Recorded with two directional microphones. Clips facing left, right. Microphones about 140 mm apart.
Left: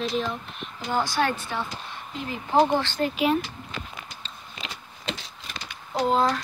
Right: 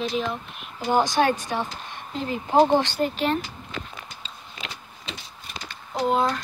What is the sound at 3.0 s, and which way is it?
Speech, 5° left (ahead or behind).